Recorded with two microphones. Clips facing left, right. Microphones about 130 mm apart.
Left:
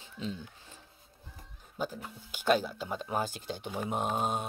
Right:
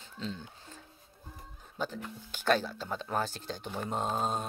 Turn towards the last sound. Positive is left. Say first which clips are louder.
# left 1 dB
turn(degrees=10)  # may be behind; listen again after turning